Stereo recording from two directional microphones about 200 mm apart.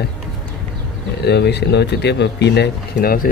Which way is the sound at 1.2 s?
55° left (ahead or behind).